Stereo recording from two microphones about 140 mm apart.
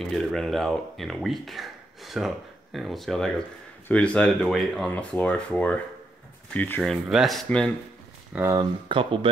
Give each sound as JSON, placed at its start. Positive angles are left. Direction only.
{"t": 0.1, "sound": "speech", "side_deg": 0}
{"t": 6.8, "sound": "speech", "side_deg": 0}
{"t": 8.5, "sound": "speech", "side_deg": -30}